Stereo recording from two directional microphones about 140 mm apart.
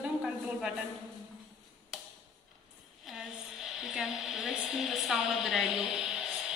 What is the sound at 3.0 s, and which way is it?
A woman's voice, centre (ahead or behind).